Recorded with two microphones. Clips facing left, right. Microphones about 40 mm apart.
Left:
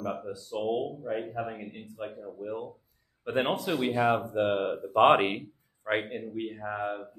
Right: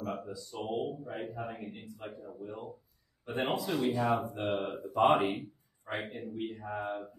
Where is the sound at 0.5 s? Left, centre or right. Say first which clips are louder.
Left 5 dB; left.